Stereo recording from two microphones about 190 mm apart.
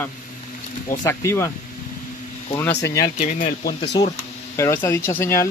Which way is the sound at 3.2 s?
40° left (ahead or behind).